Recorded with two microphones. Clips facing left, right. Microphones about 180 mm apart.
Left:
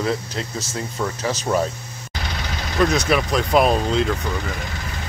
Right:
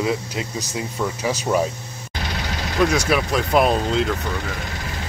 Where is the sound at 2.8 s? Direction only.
5° right (ahead or behind).